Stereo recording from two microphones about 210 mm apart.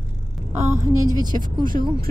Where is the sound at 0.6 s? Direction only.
35° right (ahead or behind).